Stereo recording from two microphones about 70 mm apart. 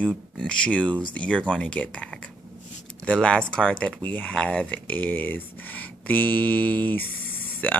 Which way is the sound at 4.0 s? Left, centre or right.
Left.